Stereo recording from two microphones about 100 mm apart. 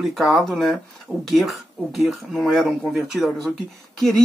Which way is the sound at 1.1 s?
20° right (ahead or behind).